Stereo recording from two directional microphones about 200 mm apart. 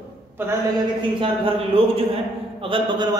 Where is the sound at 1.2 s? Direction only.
25° right (ahead or behind).